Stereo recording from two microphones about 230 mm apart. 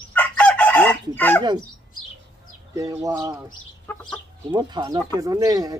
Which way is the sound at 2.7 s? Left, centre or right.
Centre.